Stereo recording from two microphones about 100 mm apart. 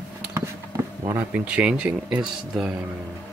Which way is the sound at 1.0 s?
25° right (ahead or behind).